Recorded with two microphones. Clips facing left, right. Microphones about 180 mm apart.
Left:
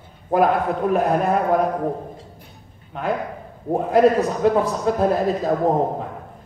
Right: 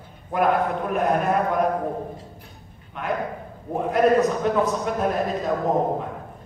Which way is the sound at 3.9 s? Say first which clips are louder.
Left 2 dB; 30° left (ahead or behind).